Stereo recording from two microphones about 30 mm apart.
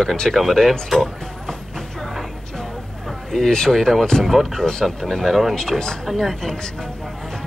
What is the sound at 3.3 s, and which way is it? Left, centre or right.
Speech, centre.